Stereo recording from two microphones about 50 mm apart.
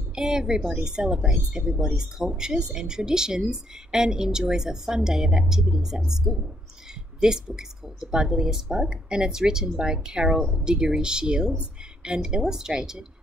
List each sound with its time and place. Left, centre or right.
0.1 s a woman's voice: centre